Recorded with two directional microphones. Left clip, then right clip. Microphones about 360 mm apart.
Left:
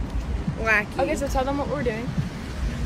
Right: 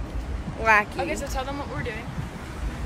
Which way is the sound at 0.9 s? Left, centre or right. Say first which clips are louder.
Left 5 dB; centre.